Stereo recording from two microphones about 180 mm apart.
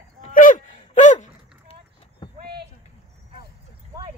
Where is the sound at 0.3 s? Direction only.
45° left (ahead or behind).